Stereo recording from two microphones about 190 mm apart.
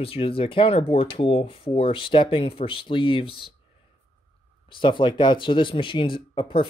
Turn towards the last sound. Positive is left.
turn(degrees=25)  # may be behind; listen again after turning